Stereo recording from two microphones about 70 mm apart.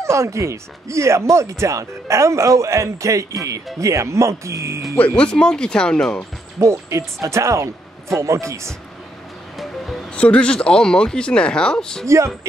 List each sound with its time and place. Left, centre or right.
0.0 s speech: right
4.9 s speech: centre
6.6 s speech: right
10.1 s speech: centre